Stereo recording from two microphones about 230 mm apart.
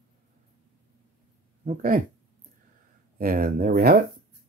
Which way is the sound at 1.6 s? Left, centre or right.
Right.